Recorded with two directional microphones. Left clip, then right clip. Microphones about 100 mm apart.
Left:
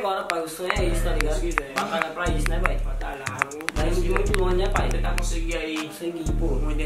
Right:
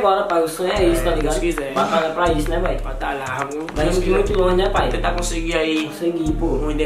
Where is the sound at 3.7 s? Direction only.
Centre (ahead or behind).